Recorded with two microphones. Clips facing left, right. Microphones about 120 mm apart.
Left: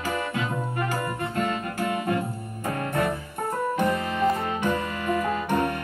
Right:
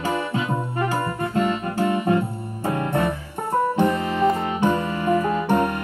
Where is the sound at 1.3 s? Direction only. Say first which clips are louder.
Right 7 dB; 25° right (ahead or behind).